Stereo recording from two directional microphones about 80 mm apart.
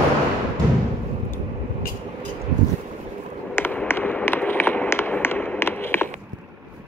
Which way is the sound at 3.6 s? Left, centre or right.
Left.